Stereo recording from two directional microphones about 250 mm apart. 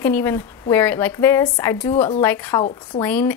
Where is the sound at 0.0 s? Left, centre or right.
Centre.